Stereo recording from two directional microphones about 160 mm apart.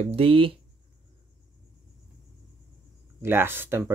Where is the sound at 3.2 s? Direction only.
15° right (ahead or behind).